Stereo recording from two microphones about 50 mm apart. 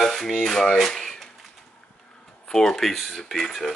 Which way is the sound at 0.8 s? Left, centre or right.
Centre.